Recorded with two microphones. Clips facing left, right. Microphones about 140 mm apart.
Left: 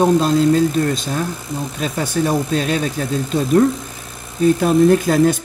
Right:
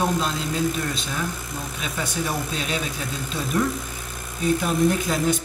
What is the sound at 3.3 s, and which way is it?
Speech, 30° left (ahead or behind).